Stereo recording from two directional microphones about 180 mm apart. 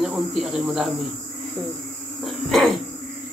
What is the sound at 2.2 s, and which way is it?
Cough, centre (ahead or behind).